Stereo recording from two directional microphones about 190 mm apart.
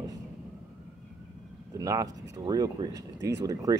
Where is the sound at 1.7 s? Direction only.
20° right (ahead or behind).